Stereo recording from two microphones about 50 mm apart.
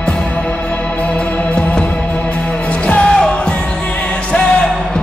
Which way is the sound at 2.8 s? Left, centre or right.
Left.